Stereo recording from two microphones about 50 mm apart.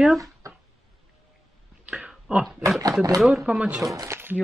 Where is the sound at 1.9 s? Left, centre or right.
Centre.